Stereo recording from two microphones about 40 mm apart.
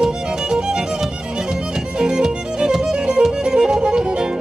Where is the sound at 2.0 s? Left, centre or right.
Centre.